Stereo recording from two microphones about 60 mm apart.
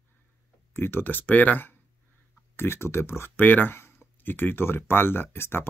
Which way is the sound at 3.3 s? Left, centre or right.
Left.